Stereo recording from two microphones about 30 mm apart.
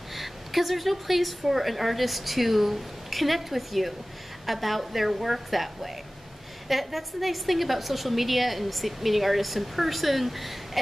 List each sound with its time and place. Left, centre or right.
0.1 s a woman's voice: centre